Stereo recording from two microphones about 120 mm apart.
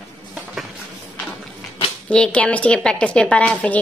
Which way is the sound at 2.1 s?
10° left (ahead or behind).